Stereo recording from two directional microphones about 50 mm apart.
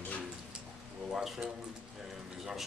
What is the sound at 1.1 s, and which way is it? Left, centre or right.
Speech, centre.